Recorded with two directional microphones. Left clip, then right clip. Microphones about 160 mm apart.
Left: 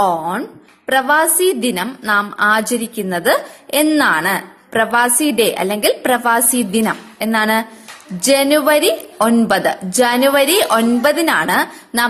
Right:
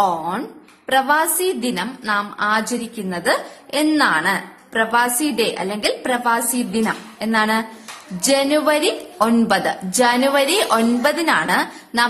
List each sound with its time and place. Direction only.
0.0 s a woman's voice: 30° left (ahead or behind)